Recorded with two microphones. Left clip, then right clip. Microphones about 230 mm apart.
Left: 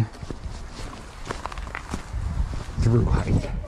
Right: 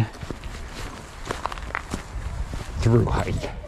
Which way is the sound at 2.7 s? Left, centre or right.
Centre.